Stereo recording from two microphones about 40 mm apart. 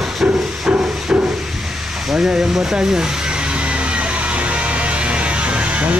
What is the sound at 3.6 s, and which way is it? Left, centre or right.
Music, right.